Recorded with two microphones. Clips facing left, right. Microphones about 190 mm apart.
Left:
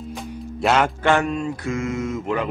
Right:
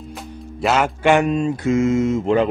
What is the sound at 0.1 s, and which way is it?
Music, centre (ahead or behind).